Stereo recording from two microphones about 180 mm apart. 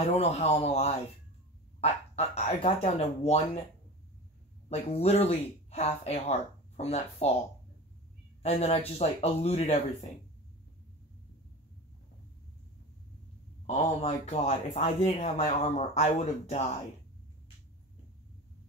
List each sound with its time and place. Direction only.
0.1 s speech: 35° left (ahead or behind)
4.6 s speech: 35° left (ahead or behind)
8.4 s speech: 35° left (ahead or behind)
13.7 s speech: 40° left (ahead or behind)